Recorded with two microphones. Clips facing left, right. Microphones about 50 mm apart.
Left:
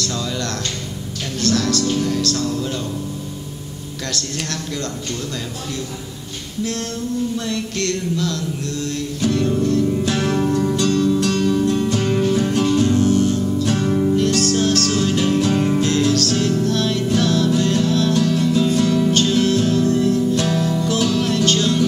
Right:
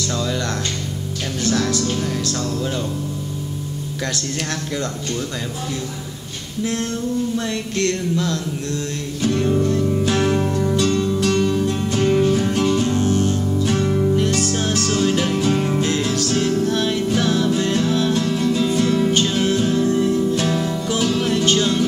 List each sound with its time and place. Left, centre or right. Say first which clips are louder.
0.0 s music: right 1 dB; centre
7.4 s a sound: right 1 dB; right
9.2 s music: even; centre
9.9 s music: right 1 dB; centre
12.8 s music: left 3 dB; right
13.7 s music: even; centre
14.1 s music: left 2 dB; centre
15.8 s music: left 3 dB; centre